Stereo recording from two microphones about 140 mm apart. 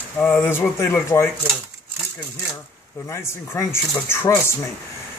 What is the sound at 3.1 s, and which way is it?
Speech, 20° left (ahead or behind).